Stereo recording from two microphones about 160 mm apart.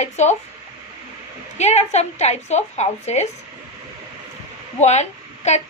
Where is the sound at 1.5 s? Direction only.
45° left (ahead or behind).